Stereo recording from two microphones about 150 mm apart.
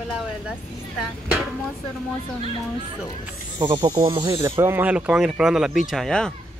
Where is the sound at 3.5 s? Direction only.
15° right (ahead or behind).